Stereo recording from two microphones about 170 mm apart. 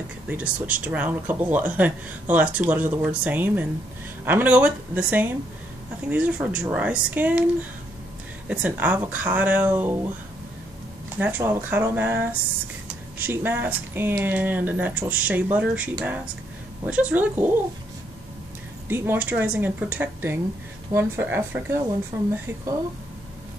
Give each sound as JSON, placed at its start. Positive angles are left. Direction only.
{"t": 0.3, "sound": "speech", "side_deg": -10}
{"t": 8.5, "sound": "speech", "side_deg": -10}
{"t": 11.1, "sound": "speech", "side_deg": -10}
{"t": 18.9, "sound": "speech", "side_deg": -15}